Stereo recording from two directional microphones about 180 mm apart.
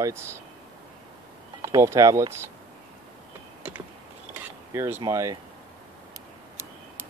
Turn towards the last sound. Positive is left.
turn(degrees=-15)  # may be behind; listen again after turning